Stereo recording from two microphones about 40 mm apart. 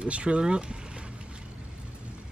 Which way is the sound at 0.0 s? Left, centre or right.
Right.